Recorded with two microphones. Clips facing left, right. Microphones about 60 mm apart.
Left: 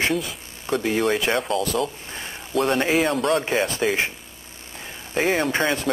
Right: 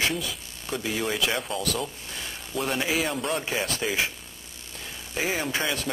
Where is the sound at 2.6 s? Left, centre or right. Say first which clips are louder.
Left 7 dB; left.